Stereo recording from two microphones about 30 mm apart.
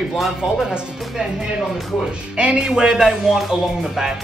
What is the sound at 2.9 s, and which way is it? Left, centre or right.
Speech, centre.